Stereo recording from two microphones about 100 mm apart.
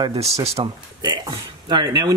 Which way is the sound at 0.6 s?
45° right (ahead or behind).